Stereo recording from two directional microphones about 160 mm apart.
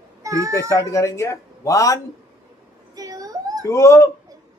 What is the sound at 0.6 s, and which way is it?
Speech, 20° left (ahead or behind).